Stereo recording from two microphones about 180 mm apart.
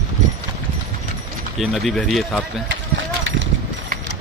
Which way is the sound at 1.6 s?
Centre (ahead or behind).